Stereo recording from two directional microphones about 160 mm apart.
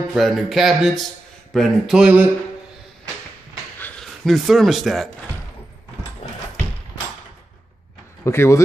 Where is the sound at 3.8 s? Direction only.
5° left (ahead or behind).